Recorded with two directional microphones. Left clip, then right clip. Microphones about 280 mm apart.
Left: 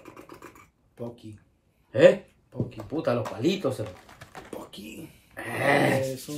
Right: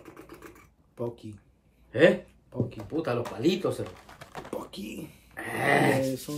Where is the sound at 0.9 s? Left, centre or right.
Right.